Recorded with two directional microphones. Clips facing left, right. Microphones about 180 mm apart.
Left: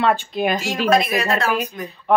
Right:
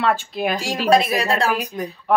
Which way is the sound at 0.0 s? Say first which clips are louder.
Left 2 dB; 5° right (ahead or behind).